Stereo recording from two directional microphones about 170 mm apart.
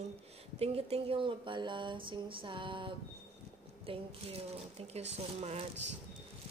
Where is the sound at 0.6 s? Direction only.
35° right (ahead or behind).